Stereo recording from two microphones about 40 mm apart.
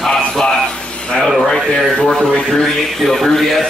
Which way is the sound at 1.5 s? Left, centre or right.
Centre.